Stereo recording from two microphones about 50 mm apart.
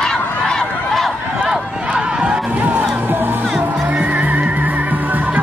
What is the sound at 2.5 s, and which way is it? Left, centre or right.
Music, right.